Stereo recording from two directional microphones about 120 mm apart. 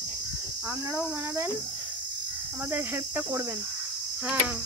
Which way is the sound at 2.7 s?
15° right (ahead or behind).